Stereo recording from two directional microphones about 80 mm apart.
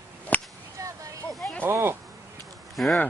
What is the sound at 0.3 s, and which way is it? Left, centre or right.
Whip, centre.